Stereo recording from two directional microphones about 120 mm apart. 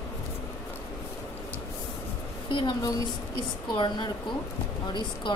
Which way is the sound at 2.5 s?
45° left (ahead or behind).